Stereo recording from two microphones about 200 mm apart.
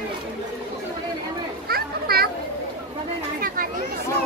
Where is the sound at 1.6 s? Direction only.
50° right (ahead or behind).